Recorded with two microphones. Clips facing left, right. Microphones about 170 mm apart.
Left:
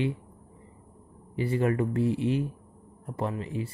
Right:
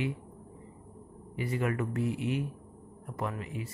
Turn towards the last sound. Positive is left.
turn(degrees=30)  # may be behind; listen again after turning